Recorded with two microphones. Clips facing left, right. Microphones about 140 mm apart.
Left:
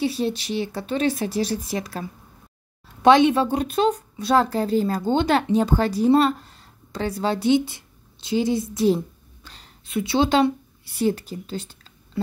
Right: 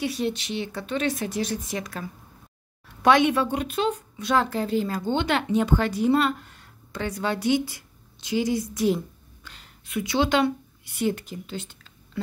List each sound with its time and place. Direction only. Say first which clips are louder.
0.0 s a woman's voice: left 3 dB; 30° left (ahead or behind)